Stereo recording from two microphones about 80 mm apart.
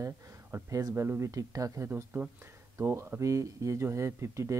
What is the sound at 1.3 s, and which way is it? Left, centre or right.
Speech, right.